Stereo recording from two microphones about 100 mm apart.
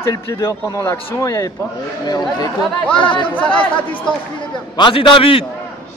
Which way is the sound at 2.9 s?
55° left (ahead or behind).